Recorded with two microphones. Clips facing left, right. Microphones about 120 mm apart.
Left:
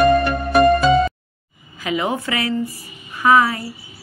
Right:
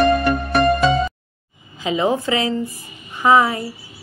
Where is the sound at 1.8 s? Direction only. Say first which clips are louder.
Right 3 dB; 25° right (ahead or behind).